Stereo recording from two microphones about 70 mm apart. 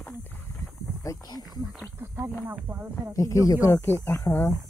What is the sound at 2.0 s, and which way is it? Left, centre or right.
Speech, right.